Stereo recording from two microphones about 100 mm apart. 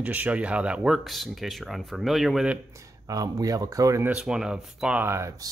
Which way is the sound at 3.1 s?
35° right (ahead or behind).